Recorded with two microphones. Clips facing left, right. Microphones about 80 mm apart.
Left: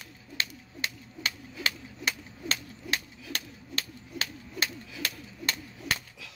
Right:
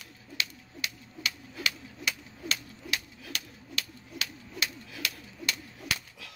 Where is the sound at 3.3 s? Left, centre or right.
Left.